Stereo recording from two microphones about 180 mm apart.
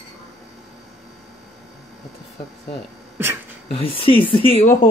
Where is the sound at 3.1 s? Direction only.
15° right (ahead or behind).